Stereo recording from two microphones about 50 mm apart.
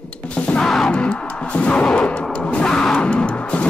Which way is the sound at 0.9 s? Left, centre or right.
Left.